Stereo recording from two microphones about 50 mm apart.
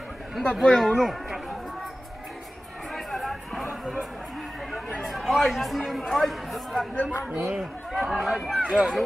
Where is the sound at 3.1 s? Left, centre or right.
Centre.